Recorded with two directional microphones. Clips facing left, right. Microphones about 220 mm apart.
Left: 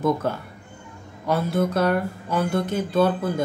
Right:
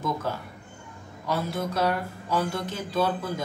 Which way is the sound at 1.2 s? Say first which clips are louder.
Left 6 dB; 55° left (ahead or behind).